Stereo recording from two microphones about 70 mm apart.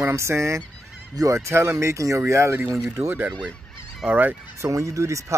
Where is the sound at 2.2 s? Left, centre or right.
Right.